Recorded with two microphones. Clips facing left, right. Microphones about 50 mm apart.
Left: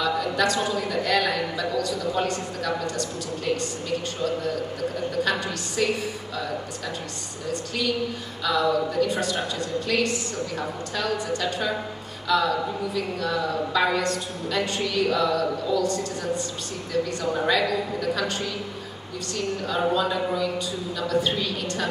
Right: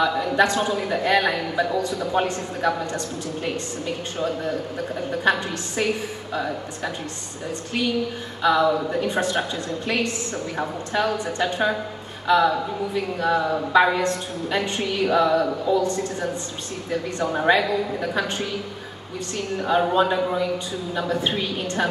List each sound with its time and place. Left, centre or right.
0.2 s speech: right
7.4 s speech: right